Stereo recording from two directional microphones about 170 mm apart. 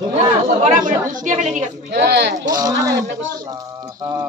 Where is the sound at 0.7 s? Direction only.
50° right (ahead or behind).